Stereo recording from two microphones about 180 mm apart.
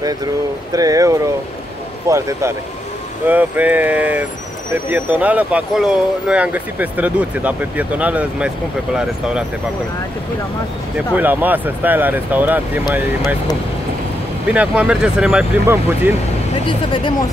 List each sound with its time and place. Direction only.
0.7 s speech: 20° right (ahead or behind)
11.1 s speech: 10° right (ahead or behind)
14.5 s speech: 5° right (ahead or behind)
16.6 s speech: 25° left (ahead or behind)